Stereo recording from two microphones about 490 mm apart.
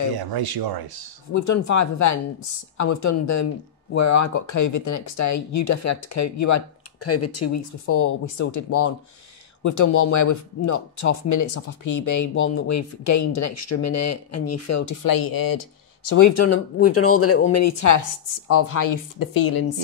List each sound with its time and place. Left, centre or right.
0.2 s speech: right
1.3 s speech: left